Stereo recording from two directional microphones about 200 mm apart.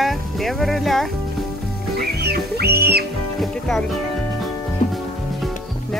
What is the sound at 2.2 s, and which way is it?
Music, 55° right (ahead or behind).